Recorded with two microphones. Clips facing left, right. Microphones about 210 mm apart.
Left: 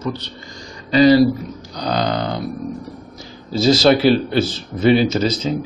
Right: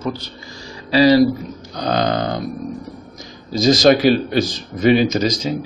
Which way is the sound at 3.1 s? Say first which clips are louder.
Left 1 dB; 15° right (ahead or behind).